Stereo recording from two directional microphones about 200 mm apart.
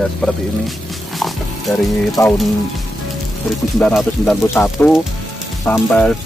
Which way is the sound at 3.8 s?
Centre (ahead or behind).